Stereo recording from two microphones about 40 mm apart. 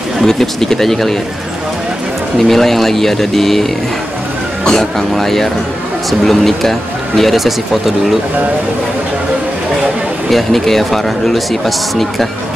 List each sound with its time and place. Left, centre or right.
0.2 s speech: centre
2.3 s speech: centre
4.6 s speech: centre
10.3 s speech: centre